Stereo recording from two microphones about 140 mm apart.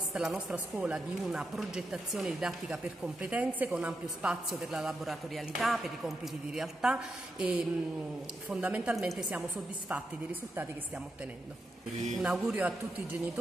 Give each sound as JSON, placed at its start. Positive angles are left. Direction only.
{"t": 0.1, "sound": "a woman's voice", "side_deg": -5}
{"t": 12.2, "sound": "speech", "side_deg": -5}